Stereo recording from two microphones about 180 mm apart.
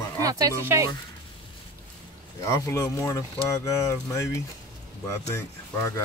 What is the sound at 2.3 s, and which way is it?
Speech, 15° left (ahead or behind).